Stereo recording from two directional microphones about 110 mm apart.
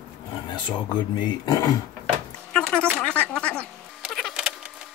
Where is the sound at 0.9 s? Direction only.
40° left (ahead or behind).